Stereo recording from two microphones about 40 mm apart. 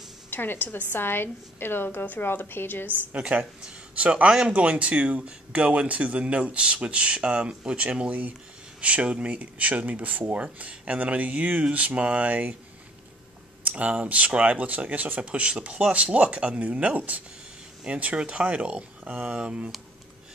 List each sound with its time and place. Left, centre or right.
0.3 s a woman's voice: left
3.3 s a man's voice: right
12.3 s speech: right
13.7 s speech: right
16.6 s speech: right